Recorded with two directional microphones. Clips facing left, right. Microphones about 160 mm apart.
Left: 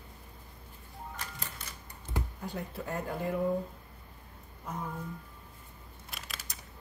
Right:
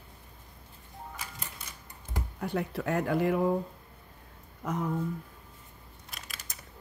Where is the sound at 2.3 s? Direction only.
70° right (ahead or behind).